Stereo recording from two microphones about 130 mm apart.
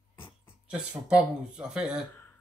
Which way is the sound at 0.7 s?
10° right (ahead or behind).